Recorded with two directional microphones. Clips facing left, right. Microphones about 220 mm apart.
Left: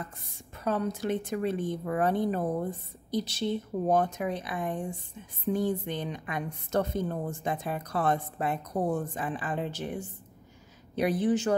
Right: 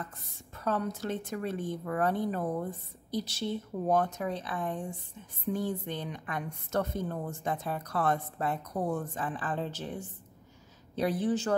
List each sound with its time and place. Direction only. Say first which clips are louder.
0.7 s a woman's voice: left 3 dB; 15° left (ahead or behind)